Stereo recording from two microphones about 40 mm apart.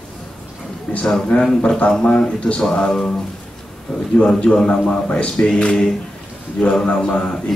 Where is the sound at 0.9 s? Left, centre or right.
Left.